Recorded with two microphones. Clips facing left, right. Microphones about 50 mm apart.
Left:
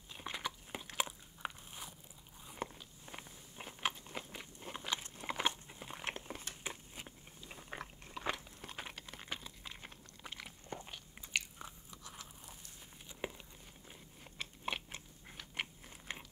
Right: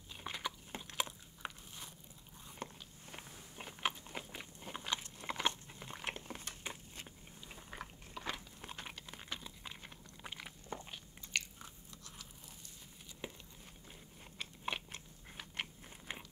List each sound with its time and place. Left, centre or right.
0.1 s biting: centre
8.8 s a sound: centre
10.2 s biting: centre
11.3 s biting: centre
13.2 s a sound: left
13.8 s biting: centre